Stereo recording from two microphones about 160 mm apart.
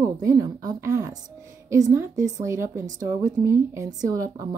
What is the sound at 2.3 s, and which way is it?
A woman's voice, 20° right (ahead or behind).